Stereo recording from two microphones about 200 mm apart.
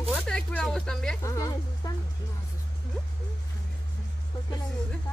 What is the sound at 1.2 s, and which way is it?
Music, 15° left (ahead or behind).